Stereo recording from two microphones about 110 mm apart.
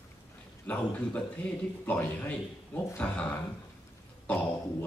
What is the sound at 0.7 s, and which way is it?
A man's voice, 15° left (ahead or behind).